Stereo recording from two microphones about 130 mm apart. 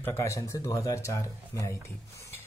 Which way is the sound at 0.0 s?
20° left (ahead or behind).